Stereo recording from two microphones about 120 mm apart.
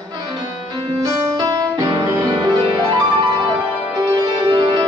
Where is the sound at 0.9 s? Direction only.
25° right (ahead or behind).